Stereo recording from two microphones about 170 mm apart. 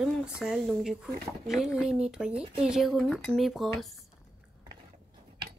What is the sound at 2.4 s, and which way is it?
Speech, 35° right (ahead or behind).